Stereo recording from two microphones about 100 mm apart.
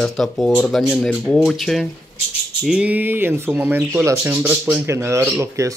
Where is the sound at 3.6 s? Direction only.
20° right (ahead or behind).